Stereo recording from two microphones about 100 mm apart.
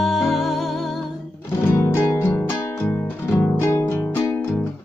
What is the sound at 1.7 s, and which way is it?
Music, 25° left (ahead or behind).